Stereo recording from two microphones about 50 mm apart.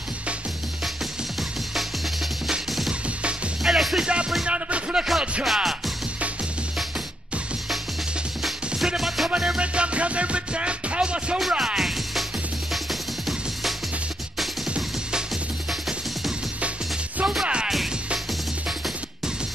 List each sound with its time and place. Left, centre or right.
3.6 s music: centre
4.0 s music: centre
5.4 s music: centre
8.7 s music: centre
9.3 s music: right
17.3 s music: centre